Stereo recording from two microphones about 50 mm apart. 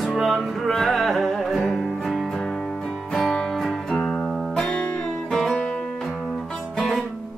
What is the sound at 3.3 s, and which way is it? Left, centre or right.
Music, centre.